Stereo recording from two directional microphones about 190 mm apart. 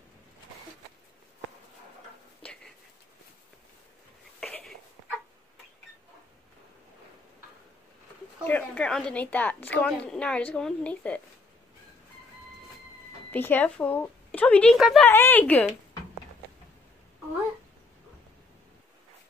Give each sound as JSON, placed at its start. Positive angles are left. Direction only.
{"t": 4.4, "sound": "a sound", "side_deg": 5}
{"t": 8.5, "sound": "a woman's voice", "side_deg": 10}
{"t": 13.3, "sound": "a woman's voice", "side_deg": 10}
{"t": 15.0, "sound": "a woman's voice", "side_deg": 10}